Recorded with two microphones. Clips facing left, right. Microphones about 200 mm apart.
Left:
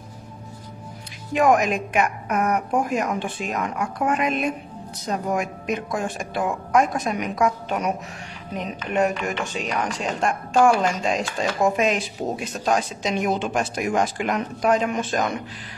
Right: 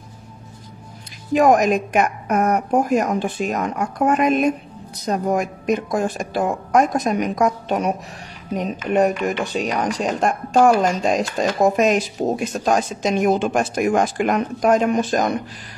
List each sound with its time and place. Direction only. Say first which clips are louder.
1.3 s a woman's voice: right 4 dB; 40° right (ahead or behind)